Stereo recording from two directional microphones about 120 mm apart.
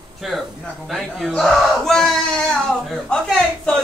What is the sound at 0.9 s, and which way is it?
Battle cry, centre (ahead or behind).